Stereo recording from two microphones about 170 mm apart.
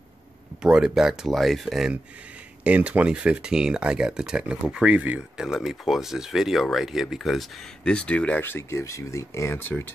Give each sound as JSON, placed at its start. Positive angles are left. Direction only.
{"t": 0.6, "sound": "speech", "side_deg": -5}